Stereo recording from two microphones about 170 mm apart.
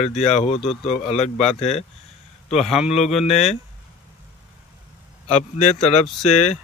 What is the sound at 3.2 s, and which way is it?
Speech, 40° left (ahead or behind).